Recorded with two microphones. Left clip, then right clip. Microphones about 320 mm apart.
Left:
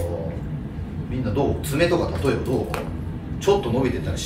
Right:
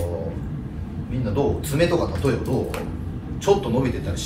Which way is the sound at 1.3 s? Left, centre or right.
Centre.